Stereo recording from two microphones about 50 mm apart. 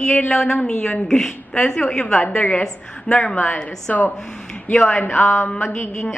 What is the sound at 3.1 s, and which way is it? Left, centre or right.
Speech, centre.